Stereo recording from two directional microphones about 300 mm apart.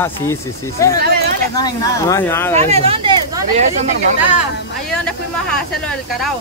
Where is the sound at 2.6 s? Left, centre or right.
Right.